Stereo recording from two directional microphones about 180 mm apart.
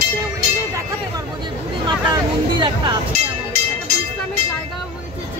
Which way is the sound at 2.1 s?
25° right (ahead or behind).